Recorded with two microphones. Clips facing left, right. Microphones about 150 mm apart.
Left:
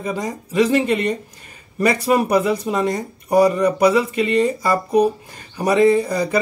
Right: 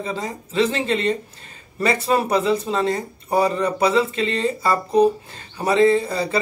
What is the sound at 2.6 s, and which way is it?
Speech, 15° left (ahead or behind).